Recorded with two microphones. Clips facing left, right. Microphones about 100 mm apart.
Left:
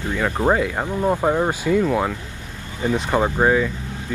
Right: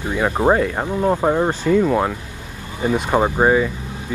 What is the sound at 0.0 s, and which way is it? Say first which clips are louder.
Speech: right 3 dB; 15° right (ahead or behind).